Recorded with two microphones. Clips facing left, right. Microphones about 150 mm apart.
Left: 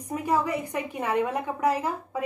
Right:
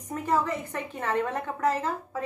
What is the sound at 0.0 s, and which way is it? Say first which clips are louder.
A woman's voice: left 1 dB; 10° left (ahead or behind).